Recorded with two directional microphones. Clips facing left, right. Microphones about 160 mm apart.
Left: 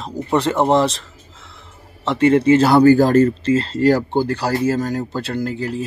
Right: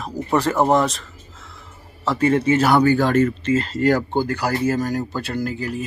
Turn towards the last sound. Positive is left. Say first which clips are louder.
# left 2 dB
turn(degrees=25)  # may be behind; listen again after turning